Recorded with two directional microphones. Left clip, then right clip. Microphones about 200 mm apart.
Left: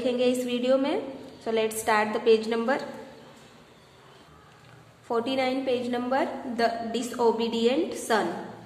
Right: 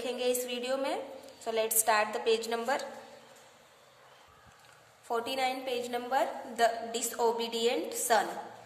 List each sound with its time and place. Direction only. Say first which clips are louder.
0.0 s a woman's voice: left 7 dB; 20° right (ahead or behind)
5.0 s a woman's voice: left 5 dB; 20° right (ahead or behind)